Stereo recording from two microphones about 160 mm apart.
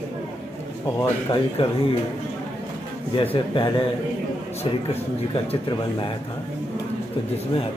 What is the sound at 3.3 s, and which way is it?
Speech, 30° left (ahead or behind).